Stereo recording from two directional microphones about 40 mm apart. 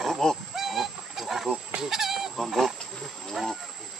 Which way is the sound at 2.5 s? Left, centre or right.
Centre.